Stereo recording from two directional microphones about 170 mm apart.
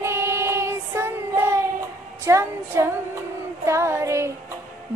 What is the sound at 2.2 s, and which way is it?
Music, 15° right (ahead or behind).